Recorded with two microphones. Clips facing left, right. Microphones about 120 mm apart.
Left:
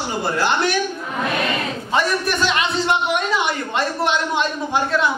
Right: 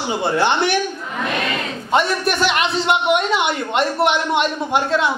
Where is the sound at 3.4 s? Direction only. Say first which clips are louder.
Right 3 dB; 20° right (ahead or behind).